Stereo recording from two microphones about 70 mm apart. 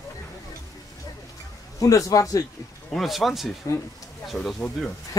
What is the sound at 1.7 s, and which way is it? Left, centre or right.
Speech, left.